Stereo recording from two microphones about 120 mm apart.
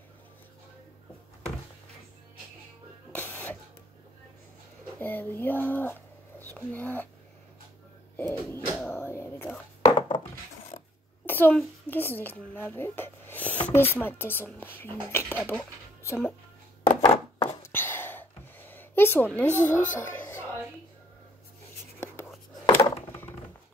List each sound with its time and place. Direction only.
3.1 s printer: 15° left (ahead or behind)
4.9 s speech: 15° left (ahead or behind)
8.2 s a sound: 20° left (ahead or behind)
9.9 s dishes: 40° left (ahead or behind)
11.2 s a child's voice: 15° left (ahead or behind)
17.4 s a sound: 20° left (ahead or behind)
19.3 s speech: 15° left (ahead or behind)
19.9 s music: 20° left (ahead or behind)
22.7 s a sound: 20° left (ahead or behind)